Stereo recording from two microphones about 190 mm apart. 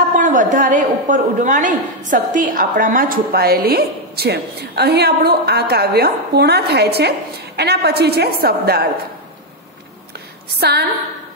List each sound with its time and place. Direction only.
0.2 s a woman's voice: 40° right (ahead or behind)
10.6 s a woman's voice: 60° right (ahead or behind)